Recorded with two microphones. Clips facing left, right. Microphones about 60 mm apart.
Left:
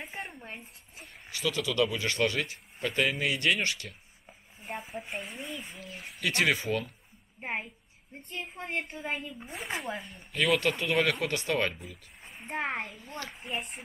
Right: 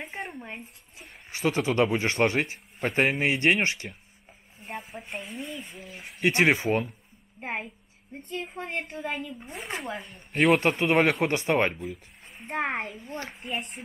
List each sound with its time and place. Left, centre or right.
0.0 s a sound: centre
1.3 s speech: right
4.6 s speech: centre
5.8 s speech: centre
6.2 s speech: right
7.3 s a woman's voice: centre
10.3 s speech: right
10.6 s speech: right
12.3 s a sound: centre
12.5 s speech: right
13.3 s speech: centre